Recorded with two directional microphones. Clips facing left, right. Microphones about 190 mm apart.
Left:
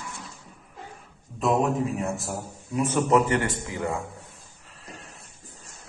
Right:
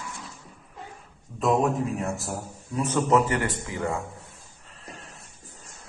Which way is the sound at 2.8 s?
15° left (ahead or behind).